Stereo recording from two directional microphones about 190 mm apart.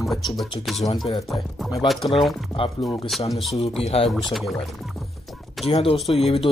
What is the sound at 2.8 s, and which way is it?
Speech, centre (ahead or behind).